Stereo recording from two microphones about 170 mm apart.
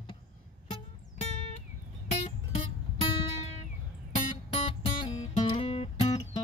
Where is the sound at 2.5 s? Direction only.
35° left (ahead or behind).